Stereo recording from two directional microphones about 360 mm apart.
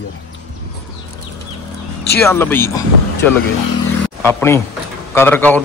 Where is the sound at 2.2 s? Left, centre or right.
Centre.